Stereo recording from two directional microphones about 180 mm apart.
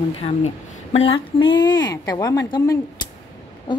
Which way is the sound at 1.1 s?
25° left (ahead or behind).